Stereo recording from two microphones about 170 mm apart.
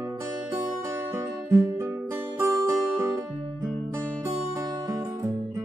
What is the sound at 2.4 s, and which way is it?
Music, 15° right (ahead or behind).